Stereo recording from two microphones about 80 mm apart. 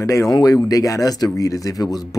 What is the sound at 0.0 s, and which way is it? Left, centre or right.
Speech, left.